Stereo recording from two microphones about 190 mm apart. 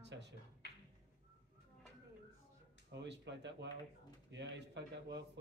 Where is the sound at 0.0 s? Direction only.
65° right (ahead or behind).